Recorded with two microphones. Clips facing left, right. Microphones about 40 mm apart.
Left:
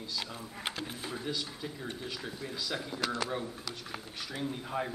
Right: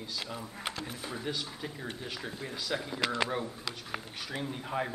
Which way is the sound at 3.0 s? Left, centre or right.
Right.